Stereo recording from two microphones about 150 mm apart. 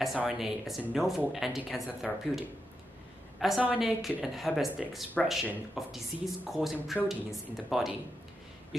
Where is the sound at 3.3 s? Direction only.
Centre (ahead or behind).